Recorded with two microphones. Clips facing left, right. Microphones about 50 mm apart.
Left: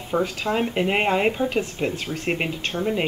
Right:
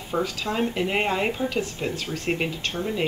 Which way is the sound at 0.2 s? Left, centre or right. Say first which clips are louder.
Left 1 dB; left.